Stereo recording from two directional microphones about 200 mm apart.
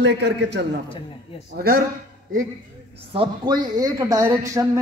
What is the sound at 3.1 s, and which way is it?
A woman's voice, 25° right (ahead or behind).